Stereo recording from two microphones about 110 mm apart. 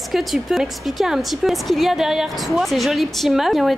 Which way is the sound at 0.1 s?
Centre (ahead or behind).